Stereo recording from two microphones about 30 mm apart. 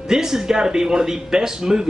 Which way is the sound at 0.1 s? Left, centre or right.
Centre.